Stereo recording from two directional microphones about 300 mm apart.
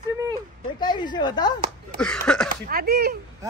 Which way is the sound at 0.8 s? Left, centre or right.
Centre.